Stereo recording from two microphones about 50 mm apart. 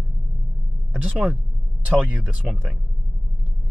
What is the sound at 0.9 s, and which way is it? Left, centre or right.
A man's voice, right.